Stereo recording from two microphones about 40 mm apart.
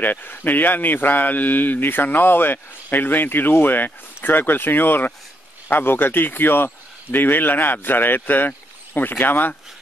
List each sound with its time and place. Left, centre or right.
0.0 s speech: left